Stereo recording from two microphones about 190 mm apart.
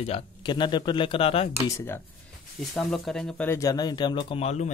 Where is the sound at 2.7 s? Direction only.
Centre (ahead or behind).